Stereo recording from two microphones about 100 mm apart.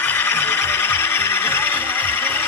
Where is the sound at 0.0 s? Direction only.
20° left (ahead or behind).